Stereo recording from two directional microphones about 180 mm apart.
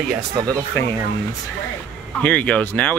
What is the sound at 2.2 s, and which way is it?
Speech, 5° left (ahead or behind).